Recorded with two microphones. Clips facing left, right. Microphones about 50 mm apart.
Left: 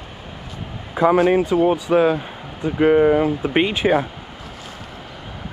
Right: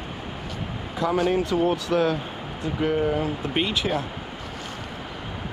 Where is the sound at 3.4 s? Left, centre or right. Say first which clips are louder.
Left 7 dB; left.